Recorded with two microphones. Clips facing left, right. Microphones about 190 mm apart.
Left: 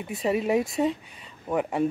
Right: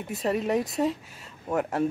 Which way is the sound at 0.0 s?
Centre (ahead or behind).